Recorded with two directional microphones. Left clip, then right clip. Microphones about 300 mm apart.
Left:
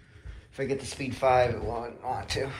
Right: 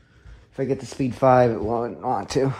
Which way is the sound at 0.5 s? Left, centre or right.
Right.